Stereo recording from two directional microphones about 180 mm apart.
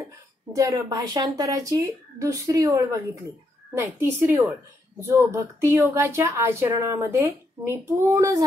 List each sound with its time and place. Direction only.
0.6 s speech: 20° right (ahead or behind)